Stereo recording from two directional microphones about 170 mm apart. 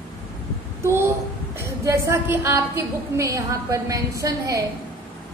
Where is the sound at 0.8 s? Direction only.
15° right (ahead or behind).